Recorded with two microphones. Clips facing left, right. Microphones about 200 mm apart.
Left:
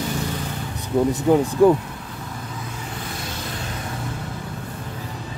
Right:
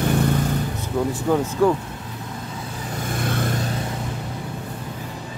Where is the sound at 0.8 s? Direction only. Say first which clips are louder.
Left 7 dB; 15° left (ahead or behind).